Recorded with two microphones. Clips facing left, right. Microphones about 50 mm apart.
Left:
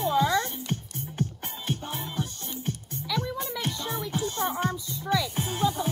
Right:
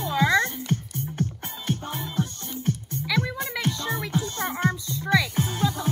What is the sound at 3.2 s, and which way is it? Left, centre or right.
Music, right.